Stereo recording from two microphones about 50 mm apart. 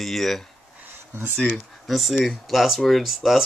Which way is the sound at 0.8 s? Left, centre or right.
Right.